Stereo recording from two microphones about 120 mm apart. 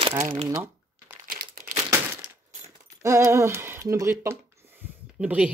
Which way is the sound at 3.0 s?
25° right (ahead or behind).